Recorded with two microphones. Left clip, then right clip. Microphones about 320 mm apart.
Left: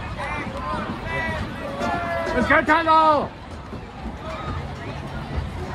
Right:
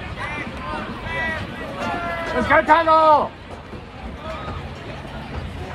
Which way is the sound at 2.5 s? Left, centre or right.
Right.